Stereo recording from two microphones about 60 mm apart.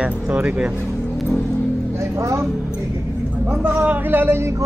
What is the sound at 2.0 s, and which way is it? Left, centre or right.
Music, right.